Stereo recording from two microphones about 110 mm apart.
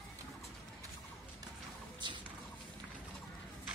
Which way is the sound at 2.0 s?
45° right (ahead or behind).